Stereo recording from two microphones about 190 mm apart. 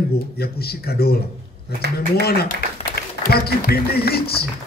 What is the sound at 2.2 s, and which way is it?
Speech, 55° left (ahead or behind).